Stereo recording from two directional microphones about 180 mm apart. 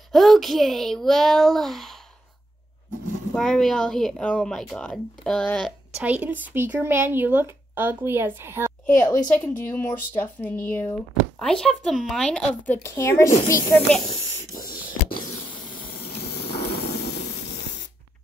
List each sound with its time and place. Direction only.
0.1 s speech: centre (ahead or behind)
3.3 s speech: centre (ahead or behind)
5.9 s speech: 10° right (ahead or behind)
9.0 s speech: 20° left (ahead or behind)
14.0 s spray: 45° left (ahead or behind)
15.5 s a sound: 50° left (ahead or behind)
16.4 s spray: 65° left (ahead or behind)